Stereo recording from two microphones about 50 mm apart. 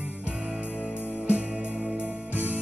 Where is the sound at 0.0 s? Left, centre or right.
Right.